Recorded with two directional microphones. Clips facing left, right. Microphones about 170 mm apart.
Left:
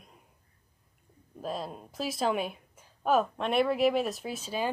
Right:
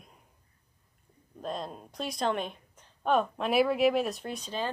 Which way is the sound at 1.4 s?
5° left (ahead or behind).